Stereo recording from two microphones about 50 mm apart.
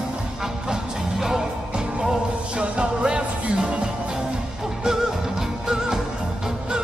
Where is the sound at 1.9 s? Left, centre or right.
Right.